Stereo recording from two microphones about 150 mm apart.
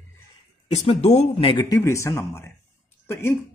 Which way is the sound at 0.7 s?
45° left (ahead or behind).